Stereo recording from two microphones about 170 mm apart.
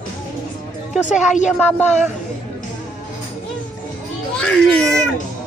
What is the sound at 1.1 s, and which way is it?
Music, 5° right (ahead or behind).